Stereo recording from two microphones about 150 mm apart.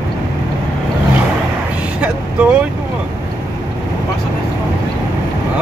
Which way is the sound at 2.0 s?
10° right (ahead or behind).